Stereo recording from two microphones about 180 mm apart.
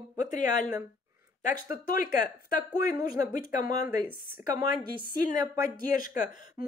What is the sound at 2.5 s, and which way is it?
Speech, 50° left (ahead or behind).